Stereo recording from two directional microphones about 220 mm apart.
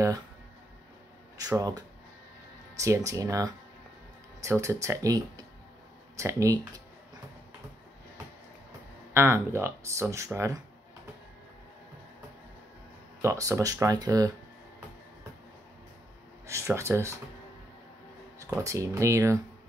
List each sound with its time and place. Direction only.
1.4 s speech: 15° right (ahead or behind)
3.1 s speech: 15° right (ahead or behind)
9.1 s speech: 10° right (ahead or behind)
13.2 s speech: 15° right (ahead or behind)
16.4 s speech: 10° right (ahead or behind)
18.4 s speech: 15° right (ahead or behind)